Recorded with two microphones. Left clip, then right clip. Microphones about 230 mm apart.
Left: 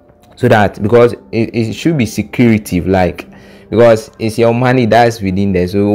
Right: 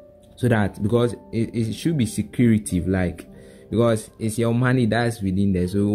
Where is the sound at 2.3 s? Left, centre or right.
Left.